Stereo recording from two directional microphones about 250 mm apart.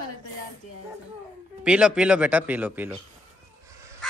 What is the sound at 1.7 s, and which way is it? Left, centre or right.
Speech, centre.